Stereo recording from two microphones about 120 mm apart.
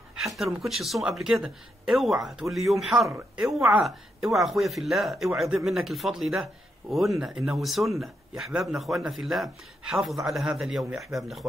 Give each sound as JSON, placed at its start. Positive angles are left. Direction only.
{"t": 0.1, "sound": "speech", "side_deg": 0}